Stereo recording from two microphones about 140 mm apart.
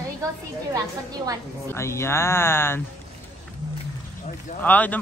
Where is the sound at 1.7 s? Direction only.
20° left (ahead or behind).